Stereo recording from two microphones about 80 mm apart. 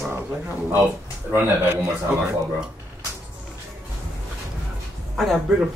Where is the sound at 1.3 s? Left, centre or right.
Right.